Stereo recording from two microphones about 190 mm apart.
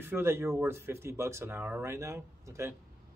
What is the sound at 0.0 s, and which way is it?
Speech, 10° right (ahead or behind).